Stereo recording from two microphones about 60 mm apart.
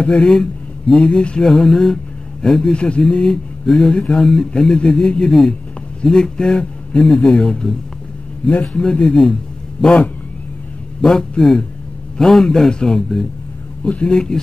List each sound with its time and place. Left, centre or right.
0.0 s speech: centre
4.2 s speech: centre
8.5 s a man's voice: left
8.8 s a man's voice: centre
11.0 s speech: centre
13.8 s a man's voice: centre
14.1 s speech: centre